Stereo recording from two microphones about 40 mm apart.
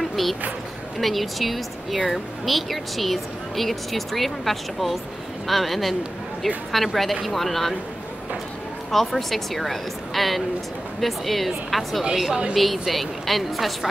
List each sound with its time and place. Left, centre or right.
0.0 s a sound: centre
0.9 s a woman's voice: centre
8.9 s a woman's voice: centre